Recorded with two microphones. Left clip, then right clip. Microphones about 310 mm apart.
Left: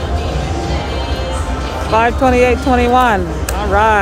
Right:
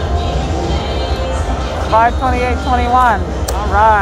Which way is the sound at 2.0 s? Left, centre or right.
Left.